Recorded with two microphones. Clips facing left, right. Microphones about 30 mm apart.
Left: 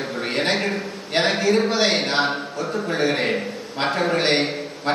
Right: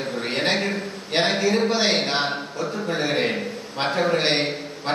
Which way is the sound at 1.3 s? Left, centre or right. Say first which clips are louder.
Left 1 dB; centre.